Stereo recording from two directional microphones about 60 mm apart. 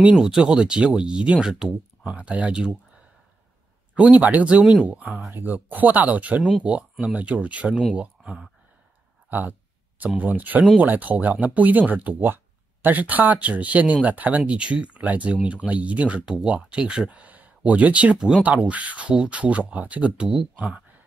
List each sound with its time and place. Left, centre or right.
0.0 s speech: centre
4.6 s speech: centre
4.8 s speech: right
9.3 s speech: right